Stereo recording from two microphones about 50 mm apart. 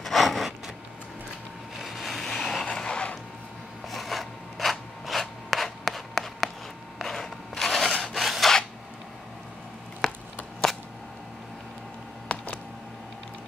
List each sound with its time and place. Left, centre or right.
0.0 s zipper: centre
1.8 s vehicle: centre
2.6 s music: centre
3.9 s filing: centre
7.0 s a sound: centre
10.0 s chopping: centre